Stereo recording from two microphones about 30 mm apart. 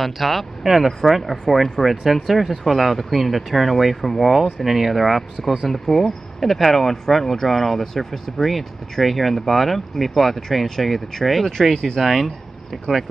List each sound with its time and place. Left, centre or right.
0.0 s speech: centre
4.6 s speech: centre
5.7 s speech: centre
11.7 s speech: centre
12.0 s speech: centre